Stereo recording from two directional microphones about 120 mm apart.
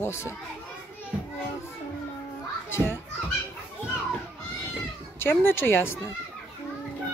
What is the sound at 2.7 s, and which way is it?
Children playing, 20° left (ahead or behind).